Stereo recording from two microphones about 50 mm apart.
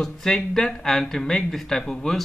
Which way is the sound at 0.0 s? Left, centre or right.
Centre.